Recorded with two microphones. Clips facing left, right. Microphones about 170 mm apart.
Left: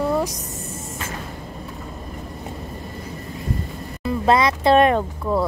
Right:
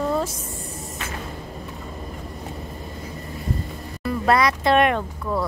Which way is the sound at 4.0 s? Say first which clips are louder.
Left 2 dB; 20° left (ahead or behind).